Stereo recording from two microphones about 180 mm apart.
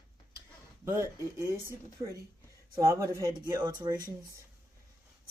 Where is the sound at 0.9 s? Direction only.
15° right (ahead or behind).